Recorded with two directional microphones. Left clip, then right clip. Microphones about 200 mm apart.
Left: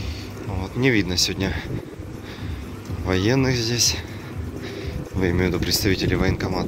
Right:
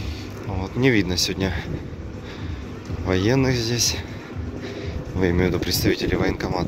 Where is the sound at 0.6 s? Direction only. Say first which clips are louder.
Right 1 dB; 10° right (ahead or behind).